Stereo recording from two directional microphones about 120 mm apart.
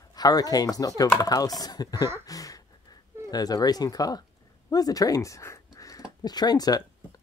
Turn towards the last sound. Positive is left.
turn(degrees=35)  # may be behind; listen again after turning